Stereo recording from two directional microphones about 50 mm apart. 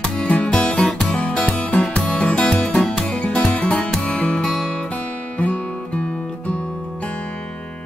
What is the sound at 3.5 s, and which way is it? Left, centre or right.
Music, left.